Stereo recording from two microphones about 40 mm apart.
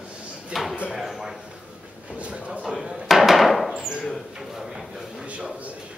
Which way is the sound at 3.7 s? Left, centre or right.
Centre.